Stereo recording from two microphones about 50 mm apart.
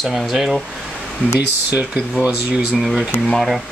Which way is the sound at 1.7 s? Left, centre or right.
Right.